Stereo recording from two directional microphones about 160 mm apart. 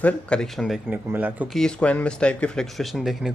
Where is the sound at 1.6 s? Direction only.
5° left (ahead or behind).